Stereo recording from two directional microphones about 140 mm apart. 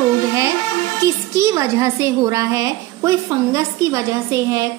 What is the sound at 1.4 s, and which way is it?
A woman's voice, 20° right (ahead or behind).